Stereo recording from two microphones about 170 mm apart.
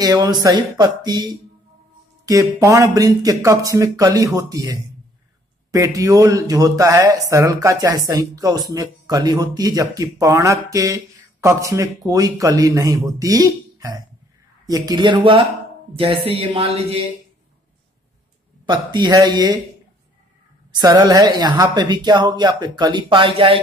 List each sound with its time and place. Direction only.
0.0 s speech: 25° right (ahead or behind)
18.7 s speech: 25° right (ahead or behind)
20.8 s speech: 25° right (ahead or behind)